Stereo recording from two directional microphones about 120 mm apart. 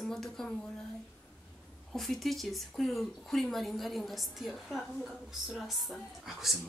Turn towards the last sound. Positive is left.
turn(degrees=0)  # may be behind; listen again after turning